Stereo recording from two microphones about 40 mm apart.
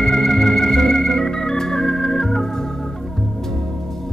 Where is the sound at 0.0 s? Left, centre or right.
Centre.